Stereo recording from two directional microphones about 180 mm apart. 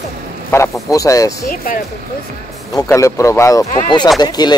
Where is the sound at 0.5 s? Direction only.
15° left (ahead or behind).